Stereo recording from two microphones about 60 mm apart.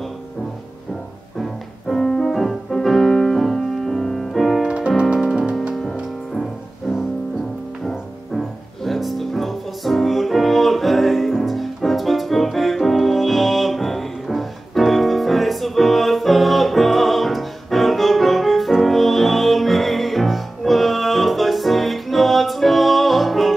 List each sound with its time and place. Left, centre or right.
1.4 s music: centre
4.6 s music: centre
7.9 s music: centre